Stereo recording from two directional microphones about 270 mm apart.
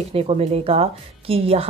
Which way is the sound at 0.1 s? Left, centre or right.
Right.